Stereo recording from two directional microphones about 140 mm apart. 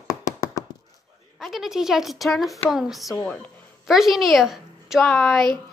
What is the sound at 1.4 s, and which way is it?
A woman's voice, centre (ahead or behind).